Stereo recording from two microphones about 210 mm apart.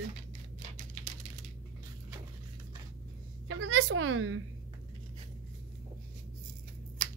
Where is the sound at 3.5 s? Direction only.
65° right (ahead or behind).